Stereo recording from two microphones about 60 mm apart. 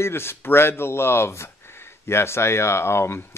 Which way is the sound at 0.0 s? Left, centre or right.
Left.